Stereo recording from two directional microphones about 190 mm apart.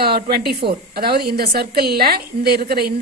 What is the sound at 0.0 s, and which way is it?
A woman's voice, 55° right (ahead or behind).